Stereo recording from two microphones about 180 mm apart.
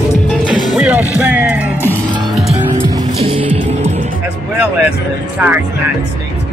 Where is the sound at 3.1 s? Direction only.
30° right (ahead or behind).